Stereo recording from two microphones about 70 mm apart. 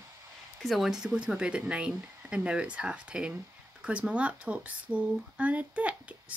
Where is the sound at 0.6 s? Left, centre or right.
Centre.